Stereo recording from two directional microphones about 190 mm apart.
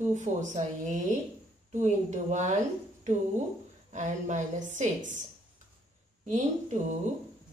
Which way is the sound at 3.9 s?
40° right (ahead or behind).